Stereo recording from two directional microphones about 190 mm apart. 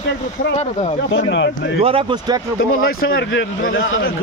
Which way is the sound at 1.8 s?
25° right (ahead or behind).